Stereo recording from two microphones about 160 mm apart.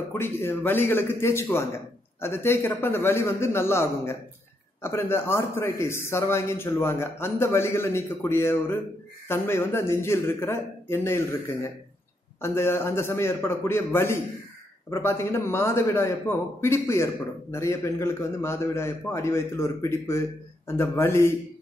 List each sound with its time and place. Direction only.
0.1 s a man's voice: 15° left (ahead or behind)